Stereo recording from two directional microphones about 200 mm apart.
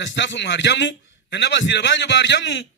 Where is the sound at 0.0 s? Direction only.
65° left (ahead or behind).